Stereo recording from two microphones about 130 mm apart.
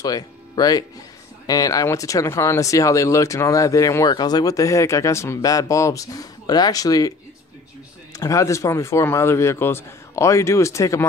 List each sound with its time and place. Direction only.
0.0 s speech: 30° left (ahead or behind)